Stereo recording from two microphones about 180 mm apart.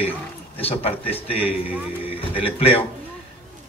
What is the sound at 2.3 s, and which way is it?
Speech, 30° left (ahead or behind).